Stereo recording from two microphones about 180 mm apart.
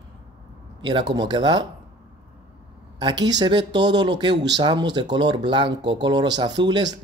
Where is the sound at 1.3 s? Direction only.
25° right (ahead or behind).